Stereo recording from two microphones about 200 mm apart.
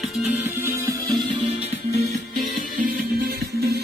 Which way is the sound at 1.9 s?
35° right (ahead or behind).